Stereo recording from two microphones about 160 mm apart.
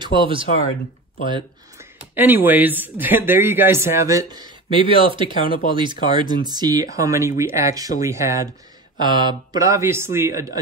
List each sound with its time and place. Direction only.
0.0 s speech: 30° right (ahead or behind)
1.8 s speech: 10° right (ahead or behind)